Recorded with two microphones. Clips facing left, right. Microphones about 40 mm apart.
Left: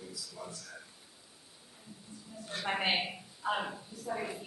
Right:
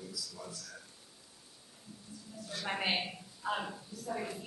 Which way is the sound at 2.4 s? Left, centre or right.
Left.